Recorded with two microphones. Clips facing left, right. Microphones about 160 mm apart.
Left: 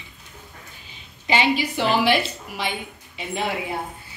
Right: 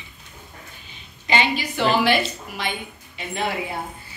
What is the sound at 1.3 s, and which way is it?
Speech, 5° left (ahead or behind).